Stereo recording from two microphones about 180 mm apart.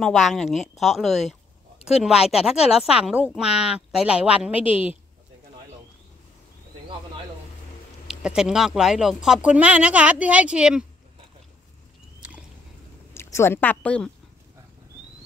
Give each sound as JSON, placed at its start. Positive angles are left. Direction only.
{"t": 0.0, "sound": "speech", "side_deg": 0}
{"t": 8.1, "sound": "speech", "side_deg": -5}
{"t": 13.1, "sound": "speech", "side_deg": 15}